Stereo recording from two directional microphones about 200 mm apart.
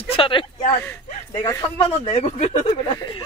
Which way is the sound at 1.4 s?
15° left (ahead or behind).